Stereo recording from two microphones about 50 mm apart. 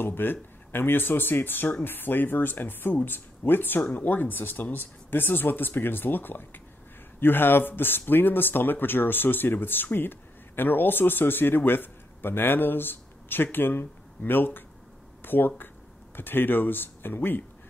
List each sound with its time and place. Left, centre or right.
0.0 s speech: left